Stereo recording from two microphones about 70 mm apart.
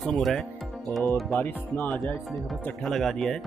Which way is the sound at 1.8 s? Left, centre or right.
Centre.